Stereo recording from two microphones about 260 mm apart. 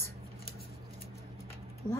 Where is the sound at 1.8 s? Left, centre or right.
Centre.